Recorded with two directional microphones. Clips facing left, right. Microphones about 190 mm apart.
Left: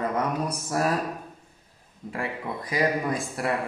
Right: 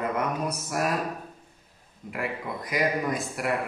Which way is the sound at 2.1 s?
30° left (ahead or behind).